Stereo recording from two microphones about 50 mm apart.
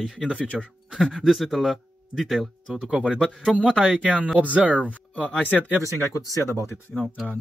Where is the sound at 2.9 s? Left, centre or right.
Centre.